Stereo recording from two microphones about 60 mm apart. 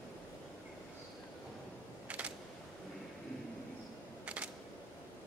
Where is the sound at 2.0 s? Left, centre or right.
Right.